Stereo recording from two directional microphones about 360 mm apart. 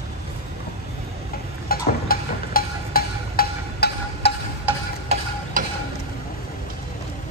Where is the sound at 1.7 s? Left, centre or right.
Left.